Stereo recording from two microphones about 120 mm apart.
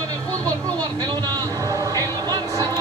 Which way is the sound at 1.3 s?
30° right (ahead or behind).